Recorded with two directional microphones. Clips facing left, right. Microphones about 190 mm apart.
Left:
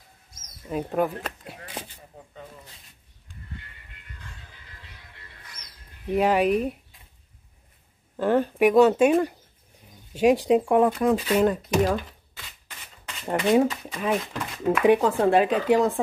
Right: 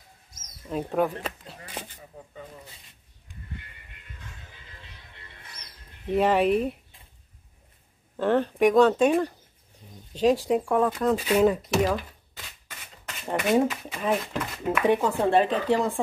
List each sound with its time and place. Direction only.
0.7 s speech: 5° left (ahead or behind)
4.7 s music: 25° right (ahead or behind)
6.1 s speech: centre (ahead or behind)
8.2 s speech: 5° left (ahead or behind)
11.3 s speech: 5° right (ahead or behind)
13.7 s speech: 5° right (ahead or behind)
14.9 s speech: 15° left (ahead or behind)